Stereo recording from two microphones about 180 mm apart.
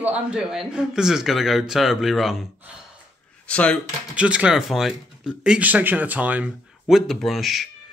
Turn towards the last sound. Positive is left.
turn(degrees=0)  # may be behind; listen again after turning